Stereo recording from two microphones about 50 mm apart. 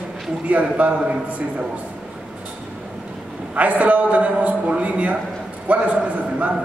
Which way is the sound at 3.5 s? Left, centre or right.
Right.